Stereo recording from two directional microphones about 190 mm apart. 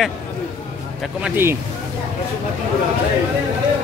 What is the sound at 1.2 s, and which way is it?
Speech, 10° right (ahead or behind).